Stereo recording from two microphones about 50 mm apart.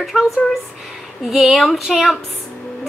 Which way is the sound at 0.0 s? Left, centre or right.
Centre.